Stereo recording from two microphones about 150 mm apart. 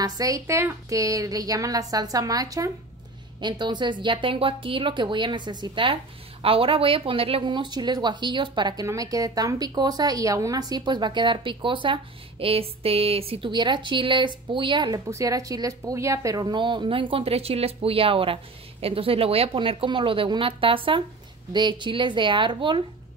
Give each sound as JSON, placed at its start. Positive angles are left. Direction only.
{"t": 0.0, "sound": "a woman's voice", "side_deg": -25}